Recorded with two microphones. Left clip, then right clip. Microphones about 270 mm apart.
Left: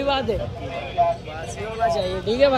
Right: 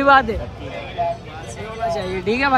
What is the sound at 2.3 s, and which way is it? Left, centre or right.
Speech, centre.